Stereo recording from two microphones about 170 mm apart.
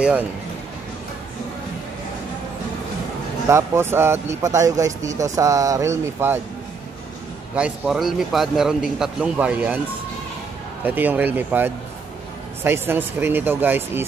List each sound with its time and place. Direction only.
3.4 s speech: 15° right (ahead or behind)
7.5 s a man's voice: 5° right (ahead or behind)
10.8 s speech: 10° right (ahead or behind)